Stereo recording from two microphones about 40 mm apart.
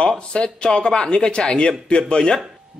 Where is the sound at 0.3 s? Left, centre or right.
Left.